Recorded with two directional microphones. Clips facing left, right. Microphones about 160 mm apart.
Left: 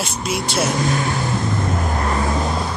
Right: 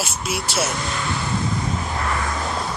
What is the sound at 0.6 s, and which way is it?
Vehicle, 45° left (ahead or behind).